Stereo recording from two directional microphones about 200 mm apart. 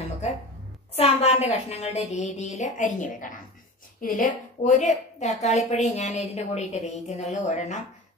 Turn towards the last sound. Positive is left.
turn(degrees=35)  # may be behind; listen again after turning